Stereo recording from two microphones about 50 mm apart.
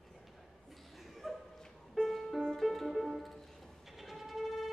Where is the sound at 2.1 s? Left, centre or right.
Centre.